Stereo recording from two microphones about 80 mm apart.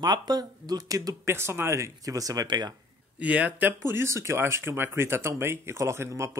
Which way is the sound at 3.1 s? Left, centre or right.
Centre.